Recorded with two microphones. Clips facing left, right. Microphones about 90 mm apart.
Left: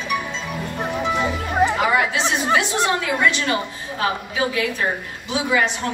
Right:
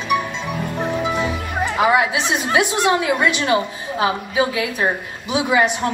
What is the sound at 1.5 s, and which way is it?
Music, 20° left (ahead or behind).